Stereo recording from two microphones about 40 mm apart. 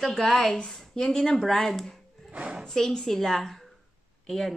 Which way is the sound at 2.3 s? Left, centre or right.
Right.